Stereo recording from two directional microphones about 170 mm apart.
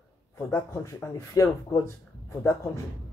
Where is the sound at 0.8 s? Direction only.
15° left (ahead or behind).